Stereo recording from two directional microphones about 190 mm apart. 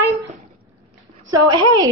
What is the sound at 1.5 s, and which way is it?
Speech, 25° right (ahead or behind).